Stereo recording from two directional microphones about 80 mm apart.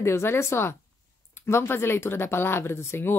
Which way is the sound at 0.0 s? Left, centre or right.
Left.